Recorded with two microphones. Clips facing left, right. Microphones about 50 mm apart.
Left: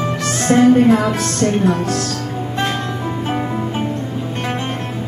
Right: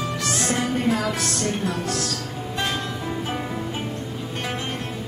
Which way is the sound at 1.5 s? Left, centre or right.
Left.